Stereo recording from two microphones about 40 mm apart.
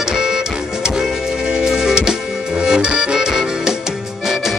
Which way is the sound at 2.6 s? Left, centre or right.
Centre.